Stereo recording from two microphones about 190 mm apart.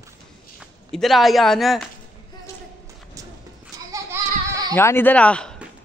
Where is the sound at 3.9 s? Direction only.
15° right (ahead or behind).